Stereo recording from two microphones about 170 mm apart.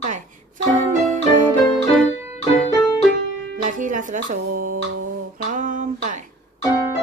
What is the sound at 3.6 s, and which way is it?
Speech, 50° right (ahead or behind).